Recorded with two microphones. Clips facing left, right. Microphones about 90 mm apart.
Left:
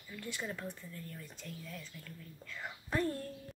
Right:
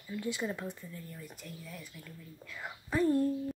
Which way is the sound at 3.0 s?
20° right (ahead or behind).